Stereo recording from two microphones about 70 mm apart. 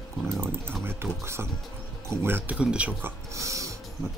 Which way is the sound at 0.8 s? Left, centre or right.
Right.